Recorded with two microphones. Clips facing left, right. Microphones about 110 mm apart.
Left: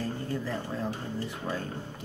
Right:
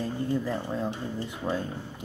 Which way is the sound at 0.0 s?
15° right (ahead or behind).